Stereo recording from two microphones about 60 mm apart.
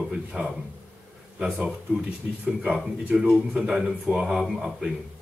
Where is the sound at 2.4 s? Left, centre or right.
Right.